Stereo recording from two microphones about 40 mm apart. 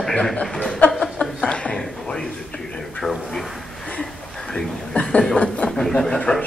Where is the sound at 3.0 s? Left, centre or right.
Centre.